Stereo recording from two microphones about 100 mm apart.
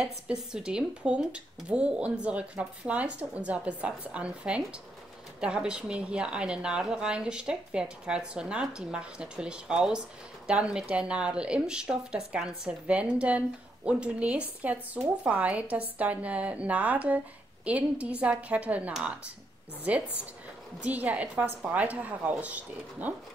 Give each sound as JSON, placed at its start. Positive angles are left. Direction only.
{"t": 0.0, "sound": "a woman's voice", "side_deg": -5}